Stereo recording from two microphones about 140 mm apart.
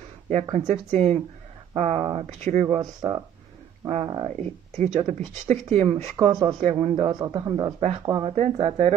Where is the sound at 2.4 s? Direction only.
55° right (ahead or behind).